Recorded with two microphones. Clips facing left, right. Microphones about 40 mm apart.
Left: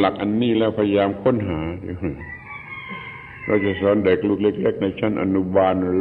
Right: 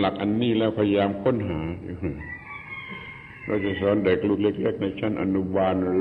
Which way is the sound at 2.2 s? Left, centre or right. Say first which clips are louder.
Left 2 dB; centre.